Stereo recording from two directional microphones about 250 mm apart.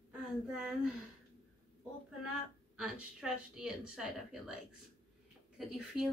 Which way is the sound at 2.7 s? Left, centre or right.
Centre.